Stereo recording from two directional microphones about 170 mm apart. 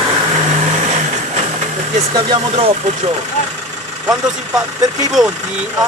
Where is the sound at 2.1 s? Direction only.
25° right (ahead or behind).